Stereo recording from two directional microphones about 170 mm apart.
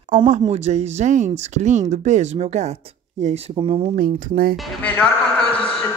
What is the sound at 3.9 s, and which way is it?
Speech, 60° right (ahead or behind).